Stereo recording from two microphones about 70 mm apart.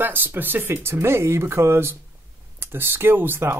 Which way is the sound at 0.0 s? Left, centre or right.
Right.